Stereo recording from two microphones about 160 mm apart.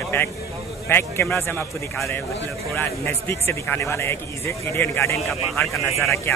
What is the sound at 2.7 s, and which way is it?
Speech, 10° left (ahead or behind).